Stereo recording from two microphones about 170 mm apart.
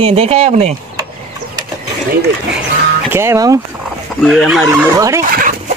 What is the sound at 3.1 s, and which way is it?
Speech, 15° right (ahead or behind).